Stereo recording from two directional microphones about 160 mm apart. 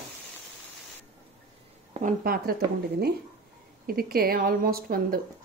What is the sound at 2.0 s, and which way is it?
Speech, 60° right (ahead or behind).